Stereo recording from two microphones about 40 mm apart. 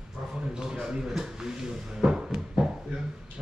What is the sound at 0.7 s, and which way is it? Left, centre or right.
A man's voice, centre.